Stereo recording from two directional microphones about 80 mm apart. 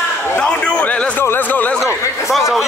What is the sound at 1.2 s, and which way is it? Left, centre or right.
Speech, left.